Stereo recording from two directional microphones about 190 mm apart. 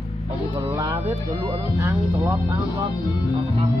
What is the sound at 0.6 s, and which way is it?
Speech, 20° right (ahead or behind).